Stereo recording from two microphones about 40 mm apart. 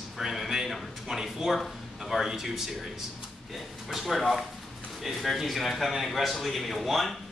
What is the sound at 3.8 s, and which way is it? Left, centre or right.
A man's voice, centre.